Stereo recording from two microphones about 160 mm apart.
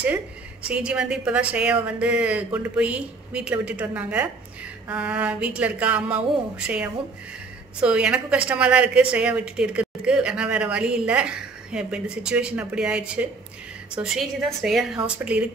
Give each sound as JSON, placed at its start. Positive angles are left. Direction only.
{"t": 0.7, "sound": "a woman's voice", "side_deg": -5}